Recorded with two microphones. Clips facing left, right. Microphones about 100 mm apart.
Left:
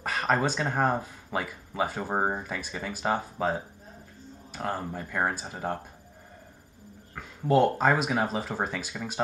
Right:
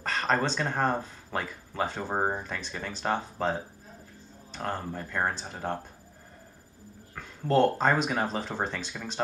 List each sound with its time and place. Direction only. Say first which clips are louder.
0.0 s speech: left 1 dB; 10° left (ahead or behind)
7.2 s speech: left 1 dB; 10° left (ahead or behind)